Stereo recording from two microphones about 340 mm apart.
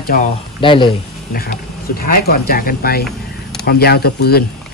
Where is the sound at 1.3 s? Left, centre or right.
Left.